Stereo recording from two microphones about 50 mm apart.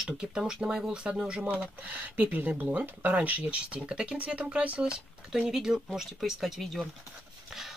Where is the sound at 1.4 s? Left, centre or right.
Right.